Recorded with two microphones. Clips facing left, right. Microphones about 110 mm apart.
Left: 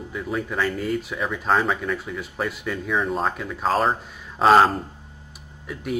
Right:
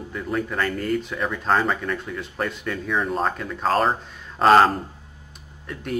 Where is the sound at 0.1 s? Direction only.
Centre (ahead or behind).